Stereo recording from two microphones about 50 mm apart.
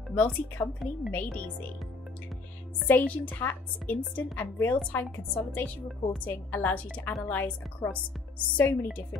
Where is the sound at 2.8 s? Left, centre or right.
Left.